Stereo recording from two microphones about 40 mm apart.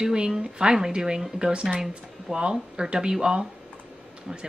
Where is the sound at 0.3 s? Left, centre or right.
Centre.